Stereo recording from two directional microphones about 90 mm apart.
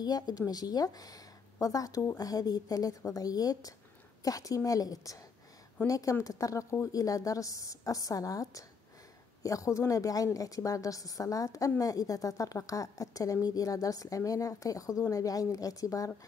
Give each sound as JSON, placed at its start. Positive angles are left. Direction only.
{"t": 0.0, "sound": "a woman's voice", "side_deg": 45}